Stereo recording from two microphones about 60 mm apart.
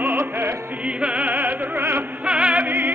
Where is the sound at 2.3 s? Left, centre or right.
Right.